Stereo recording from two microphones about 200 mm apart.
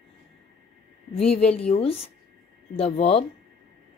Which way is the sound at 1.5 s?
30° left (ahead or behind).